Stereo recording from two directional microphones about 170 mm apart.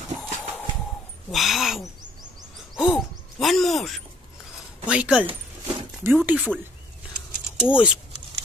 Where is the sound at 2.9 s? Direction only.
Centre (ahead or behind).